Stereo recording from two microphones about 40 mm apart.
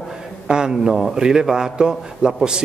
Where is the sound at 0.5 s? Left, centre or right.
Centre.